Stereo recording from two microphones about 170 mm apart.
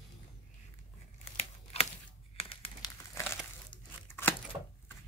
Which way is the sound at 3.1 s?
15° left (ahead or behind).